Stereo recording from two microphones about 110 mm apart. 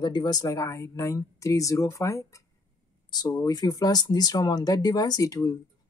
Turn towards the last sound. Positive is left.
turn(degrees=35)  # may be behind; listen again after turning